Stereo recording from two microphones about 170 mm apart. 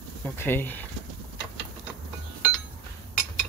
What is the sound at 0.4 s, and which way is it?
Speech, 10° left (ahead or behind).